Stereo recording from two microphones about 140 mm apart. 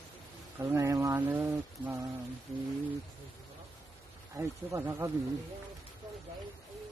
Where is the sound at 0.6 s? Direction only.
20° right (ahead or behind).